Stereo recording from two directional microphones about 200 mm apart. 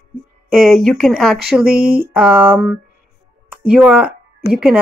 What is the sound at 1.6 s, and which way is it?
Speech, 50° right (ahead or behind).